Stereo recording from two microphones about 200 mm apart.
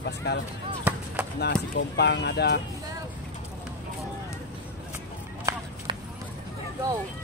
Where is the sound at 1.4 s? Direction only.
55° left (ahead or behind).